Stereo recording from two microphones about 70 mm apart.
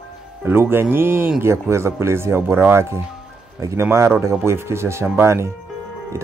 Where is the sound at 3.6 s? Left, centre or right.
Right.